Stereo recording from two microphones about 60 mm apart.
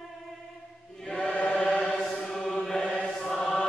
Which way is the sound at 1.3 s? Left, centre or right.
Left.